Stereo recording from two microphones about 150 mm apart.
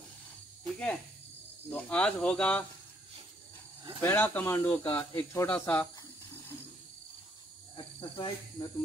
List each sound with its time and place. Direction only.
0.7 s cricket: 5° left (ahead or behind)
1.7 s speech: 10° left (ahead or behind)
4.0 s speech: 10° left (ahead or behind)
7.7 s cricket: 35° left (ahead or behind)